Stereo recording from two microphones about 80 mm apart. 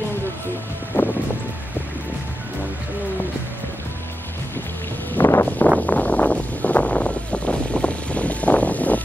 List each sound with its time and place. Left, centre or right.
0.9 s music: left
5.1 s wind: left
5.8 s a sound: centre